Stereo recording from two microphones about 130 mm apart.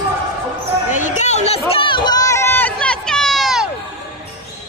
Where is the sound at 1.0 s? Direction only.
65° left (ahead or behind).